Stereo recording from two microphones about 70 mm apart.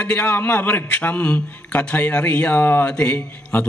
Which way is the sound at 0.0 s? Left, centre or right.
Left.